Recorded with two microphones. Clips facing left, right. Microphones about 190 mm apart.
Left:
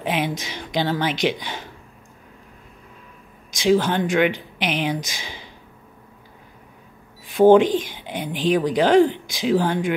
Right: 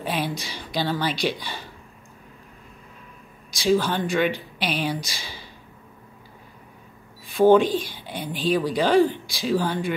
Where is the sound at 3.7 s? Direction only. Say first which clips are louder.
Left 3 dB; 15° left (ahead or behind).